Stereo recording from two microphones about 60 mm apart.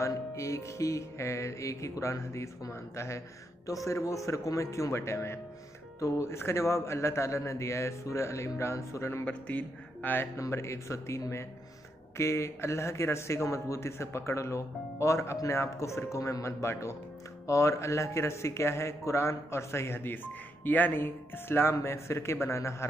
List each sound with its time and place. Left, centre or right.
0.0 s music: left
3.6 s music: left
5.9 s a man's voice: left
9.2 s speech: left
10.5 s a man's voice: left
15.3 s music: left
17.5 s a man's voice: left